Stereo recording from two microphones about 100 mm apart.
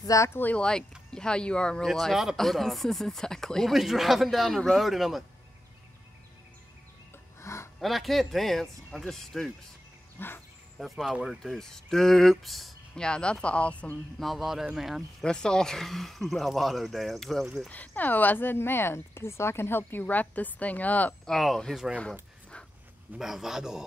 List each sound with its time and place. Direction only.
0.0 s speech: 30° left (ahead or behind)
0.4 s speech: 15° left (ahead or behind)
7.3 s a sound: 30° left (ahead or behind)
7.8 s speech: centre (ahead or behind)
10.1 s dog: 20° left (ahead or behind)
10.8 s speech: centre (ahead or behind)
14.2 s speech: centre (ahead or behind)
15.0 s speech: 10° left (ahead or behind)
17.6 s speech: 15° left (ahead or behind)
21.3 s speech: 5° left (ahead or behind)
23.1 s speech: 5° right (ahead or behind)